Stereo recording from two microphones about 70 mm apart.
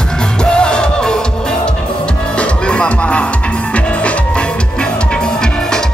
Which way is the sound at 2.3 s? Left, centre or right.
Centre.